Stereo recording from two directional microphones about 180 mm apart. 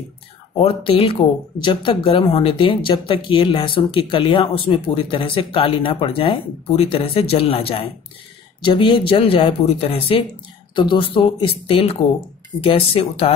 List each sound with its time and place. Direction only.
0.6 s speech: 30° left (ahead or behind)